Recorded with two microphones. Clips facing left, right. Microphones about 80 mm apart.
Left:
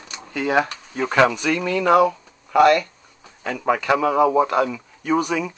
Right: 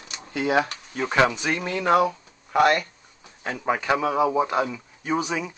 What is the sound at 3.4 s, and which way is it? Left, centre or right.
Speech, centre.